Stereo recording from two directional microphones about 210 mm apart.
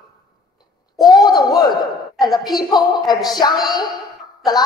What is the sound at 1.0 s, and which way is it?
A woman's voice, 20° left (ahead or behind).